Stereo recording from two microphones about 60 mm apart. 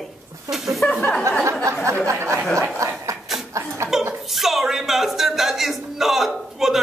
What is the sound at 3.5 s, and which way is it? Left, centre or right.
Speech, right.